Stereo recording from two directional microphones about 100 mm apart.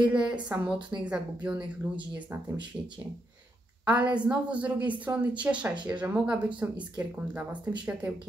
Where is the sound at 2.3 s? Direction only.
25° right (ahead or behind).